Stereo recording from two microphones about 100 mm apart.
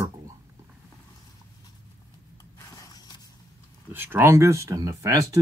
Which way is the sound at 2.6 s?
35° left (ahead or behind).